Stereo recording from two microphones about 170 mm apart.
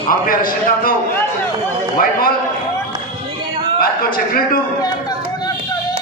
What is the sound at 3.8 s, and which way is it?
Speech, 60° left (ahead or behind).